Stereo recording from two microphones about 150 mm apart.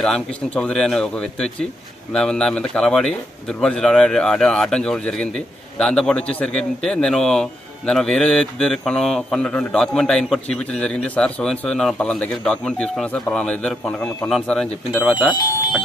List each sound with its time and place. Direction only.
0.0 s a man's voice: centre (ahead or behind)
15.2 s speech: 25° left (ahead or behind)